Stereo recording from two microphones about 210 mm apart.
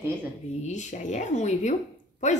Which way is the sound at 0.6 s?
35° left (ahead or behind).